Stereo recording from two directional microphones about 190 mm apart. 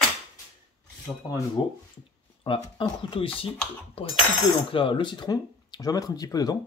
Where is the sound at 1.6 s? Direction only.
25° left (ahead or behind).